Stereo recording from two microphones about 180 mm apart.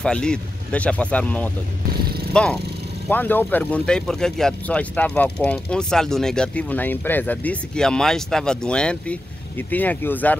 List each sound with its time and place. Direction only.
0.0 s speech: 5° left (ahead or behind)